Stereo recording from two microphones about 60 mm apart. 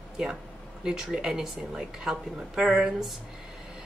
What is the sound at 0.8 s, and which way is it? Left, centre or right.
A woman's voice, centre.